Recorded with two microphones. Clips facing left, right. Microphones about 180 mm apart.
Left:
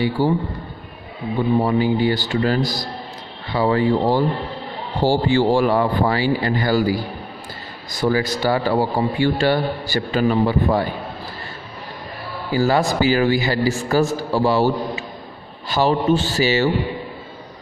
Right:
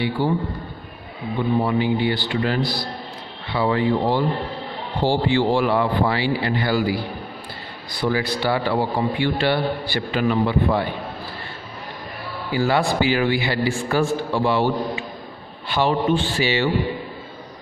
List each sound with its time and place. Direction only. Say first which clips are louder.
0.2 s a man's voice: left 3 dB; 40° left (ahead or behind)
1.6 s a man's voice: left 2 dB; 40° left (ahead or behind)
5.2 s a man's voice: left 3 dB; 45° left (ahead or behind)
12.5 s a man's voice: left 2 dB; 40° left (ahead or behind)